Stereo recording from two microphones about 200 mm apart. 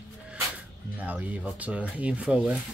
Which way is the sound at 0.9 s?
5° right (ahead or behind).